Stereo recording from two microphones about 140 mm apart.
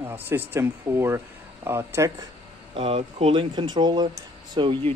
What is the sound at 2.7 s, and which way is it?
Speech, 45° right (ahead or behind).